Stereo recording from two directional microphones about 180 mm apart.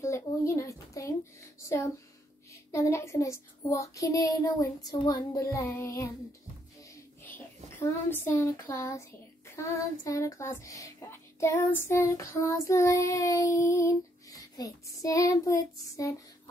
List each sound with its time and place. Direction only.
0.0 s a sound: 15° left (ahead or behind)
2.7 s child singing: 15° left (ahead or behind)
7.2 s speech: 10° left (ahead or behind)
9.6 s child singing: 20° left (ahead or behind)